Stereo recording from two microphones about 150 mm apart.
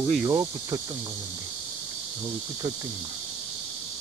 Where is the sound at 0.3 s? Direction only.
25° right (ahead or behind).